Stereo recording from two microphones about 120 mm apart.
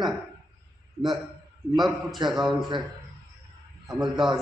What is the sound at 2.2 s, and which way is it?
Speech, 40° right (ahead or behind).